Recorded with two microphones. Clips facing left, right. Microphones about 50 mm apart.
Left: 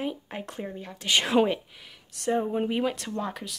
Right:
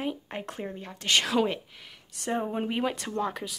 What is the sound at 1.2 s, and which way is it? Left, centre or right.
Speech, left.